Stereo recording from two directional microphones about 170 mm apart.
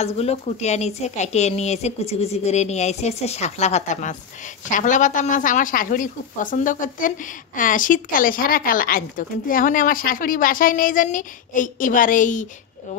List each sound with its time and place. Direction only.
0.0 s a woman's voice: 40° left (ahead or behind)